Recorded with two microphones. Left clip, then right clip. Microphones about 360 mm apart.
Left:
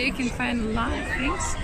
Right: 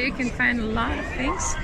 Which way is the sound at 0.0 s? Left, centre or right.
Centre.